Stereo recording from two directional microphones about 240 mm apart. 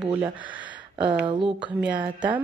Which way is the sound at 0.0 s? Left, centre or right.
Centre.